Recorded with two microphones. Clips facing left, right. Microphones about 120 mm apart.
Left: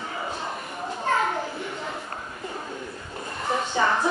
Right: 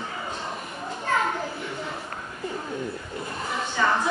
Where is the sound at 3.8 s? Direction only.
30° left (ahead or behind).